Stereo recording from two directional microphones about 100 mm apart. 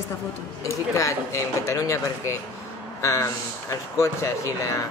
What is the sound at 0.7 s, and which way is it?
Speech, 30° left (ahead or behind).